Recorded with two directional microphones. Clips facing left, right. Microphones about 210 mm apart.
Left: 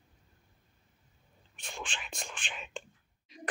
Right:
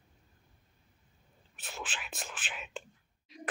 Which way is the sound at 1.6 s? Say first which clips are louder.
Even; 5° right (ahead or behind).